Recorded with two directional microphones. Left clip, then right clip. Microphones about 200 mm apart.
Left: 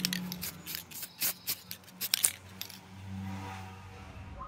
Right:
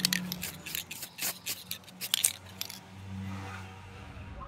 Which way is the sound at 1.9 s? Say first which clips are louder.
Right 1 dB; 15° left (ahead or behind).